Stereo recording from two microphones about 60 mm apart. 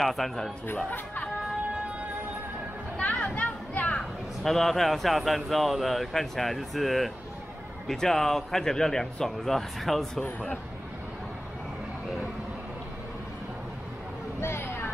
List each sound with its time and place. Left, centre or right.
0.0 s speech: centre
0.8 s speech: left
3.2 s a sound: left
4.4 s speech: centre
14.4 s vehicle: left